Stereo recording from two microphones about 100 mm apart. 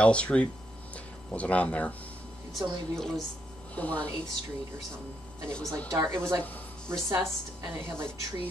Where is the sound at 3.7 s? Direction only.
15° left (ahead or behind).